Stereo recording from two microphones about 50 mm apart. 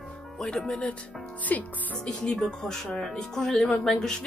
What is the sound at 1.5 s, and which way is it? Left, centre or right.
Speech, left.